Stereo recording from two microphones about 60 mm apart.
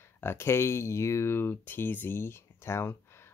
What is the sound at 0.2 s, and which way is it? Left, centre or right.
Speech, left.